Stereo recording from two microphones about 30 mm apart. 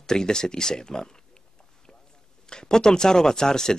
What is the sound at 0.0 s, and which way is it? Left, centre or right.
Speech, left.